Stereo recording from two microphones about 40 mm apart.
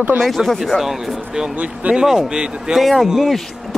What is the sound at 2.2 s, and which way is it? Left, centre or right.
Speech, right.